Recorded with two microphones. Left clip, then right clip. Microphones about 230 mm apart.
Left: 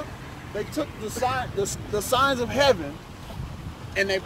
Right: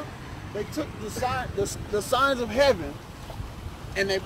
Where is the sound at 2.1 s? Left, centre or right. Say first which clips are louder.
Left 2 dB; left.